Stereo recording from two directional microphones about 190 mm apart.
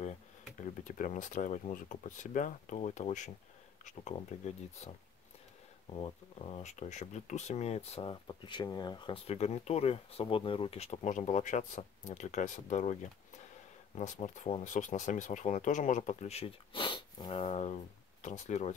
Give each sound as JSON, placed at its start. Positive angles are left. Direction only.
{"t": 0.8, "sound": "speech", "side_deg": 40}
{"t": 4.3, "sound": "speech", "side_deg": 35}
{"t": 5.9, "sound": "speech", "side_deg": 30}
{"t": 13.9, "sound": "speech", "side_deg": 40}